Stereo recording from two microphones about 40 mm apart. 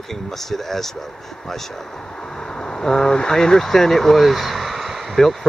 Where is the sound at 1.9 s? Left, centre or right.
Centre.